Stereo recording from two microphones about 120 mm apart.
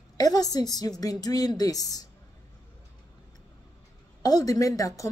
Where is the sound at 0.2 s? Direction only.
30° left (ahead or behind).